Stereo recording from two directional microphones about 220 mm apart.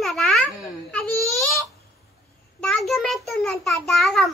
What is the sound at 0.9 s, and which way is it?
Baby cry, centre (ahead or behind).